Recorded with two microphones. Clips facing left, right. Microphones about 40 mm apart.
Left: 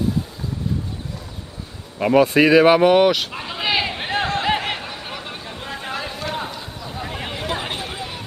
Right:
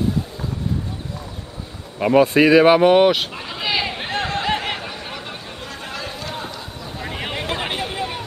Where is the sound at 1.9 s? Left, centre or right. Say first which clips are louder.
Right 1 dB; centre.